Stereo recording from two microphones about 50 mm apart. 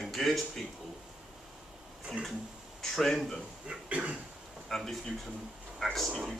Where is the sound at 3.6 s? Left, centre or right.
Right.